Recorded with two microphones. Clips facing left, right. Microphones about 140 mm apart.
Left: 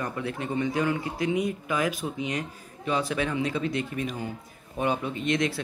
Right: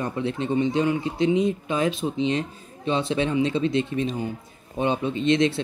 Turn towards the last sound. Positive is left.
turn(degrees=-25)  # may be behind; listen again after turning